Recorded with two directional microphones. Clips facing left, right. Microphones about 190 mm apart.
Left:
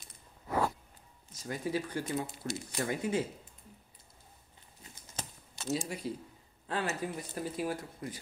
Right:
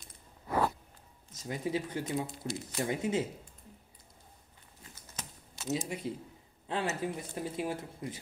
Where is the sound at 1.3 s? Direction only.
20° right (ahead or behind).